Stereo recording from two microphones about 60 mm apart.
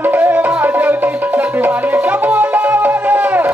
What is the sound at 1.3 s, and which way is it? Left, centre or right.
Music, right.